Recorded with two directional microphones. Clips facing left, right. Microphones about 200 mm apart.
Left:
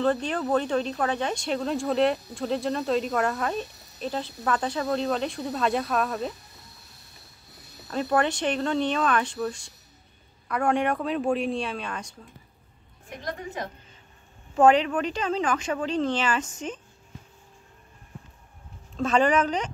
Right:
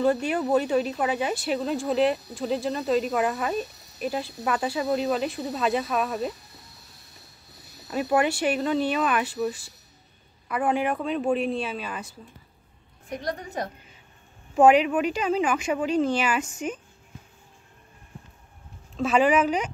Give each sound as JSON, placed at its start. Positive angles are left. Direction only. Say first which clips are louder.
{"t": 0.0, "sound": "speech", "louder": "right 2 dB", "side_deg": -10}
{"t": 7.9, "sound": "a woman's voice", "louder": "right 1 dB", "side_deg": -10}
{"t": 13.1, "sound": "a woman's voice", "louder": "right 3 dB", "side_deg": -40}
{"t": 14.5, "sound": "a woman's voice", "louder": "right 2 dB", "side_deg": -10}
{"t": 18.9, "sound": "a woman's voice", "louder": "right 1 dB", "side_deg": -5}